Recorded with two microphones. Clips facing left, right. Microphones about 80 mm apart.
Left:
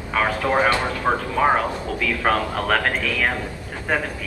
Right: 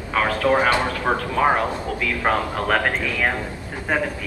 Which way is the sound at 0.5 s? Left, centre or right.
Right.